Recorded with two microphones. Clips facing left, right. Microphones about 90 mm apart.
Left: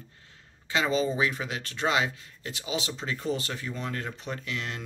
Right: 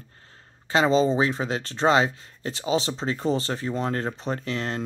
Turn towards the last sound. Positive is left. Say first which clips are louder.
# right 6 dB
turn(degrees=-35)  # may be behind; listen again after turning